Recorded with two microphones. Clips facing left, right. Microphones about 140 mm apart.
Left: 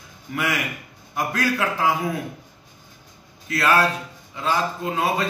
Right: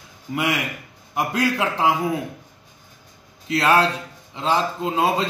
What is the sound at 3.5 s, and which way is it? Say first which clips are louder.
Speech: right 2 dB; 25° right (ahead or behind).